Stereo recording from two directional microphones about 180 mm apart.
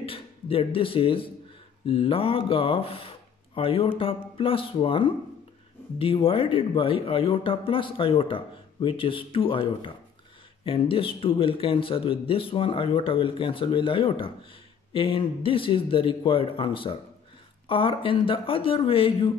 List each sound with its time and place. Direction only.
0.0 s speech: 30° left (ahead or behind)